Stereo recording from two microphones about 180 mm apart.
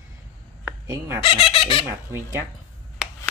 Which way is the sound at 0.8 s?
15° right (ahead or behind).